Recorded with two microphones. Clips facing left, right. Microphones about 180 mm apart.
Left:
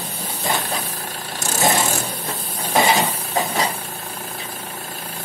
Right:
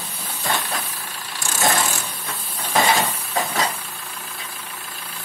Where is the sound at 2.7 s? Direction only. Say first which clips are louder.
Left 2 dB; 20° left (ahead or behind).